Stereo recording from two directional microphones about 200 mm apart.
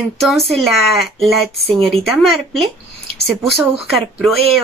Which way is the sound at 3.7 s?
Centre (ahead or behind).